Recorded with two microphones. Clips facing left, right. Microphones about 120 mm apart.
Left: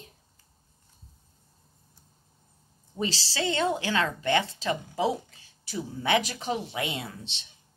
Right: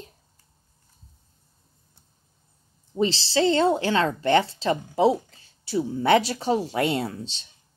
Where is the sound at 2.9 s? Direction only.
25° right (ahead or behind).